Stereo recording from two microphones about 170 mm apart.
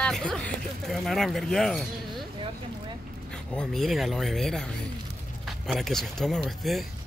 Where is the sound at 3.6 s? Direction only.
Centre (ahead or behind).